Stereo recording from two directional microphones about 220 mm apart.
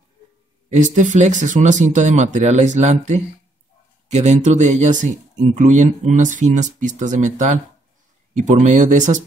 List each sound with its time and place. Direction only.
0.7 s speech: 35° right (ahead or behind)